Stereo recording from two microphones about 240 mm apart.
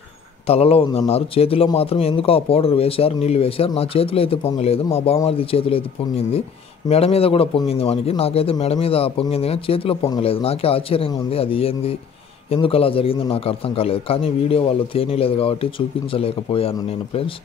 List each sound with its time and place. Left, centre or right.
0.5 s a man's voice: left